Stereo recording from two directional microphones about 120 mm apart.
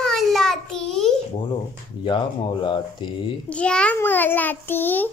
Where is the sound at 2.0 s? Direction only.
45° left (ahead or behind).